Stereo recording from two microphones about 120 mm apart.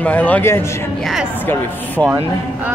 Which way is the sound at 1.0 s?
5° right (ahead or behind).